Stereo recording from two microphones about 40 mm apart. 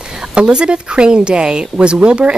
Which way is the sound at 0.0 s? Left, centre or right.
Centre.